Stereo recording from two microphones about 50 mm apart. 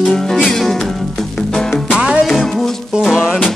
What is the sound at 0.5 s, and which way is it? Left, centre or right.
Music, centre.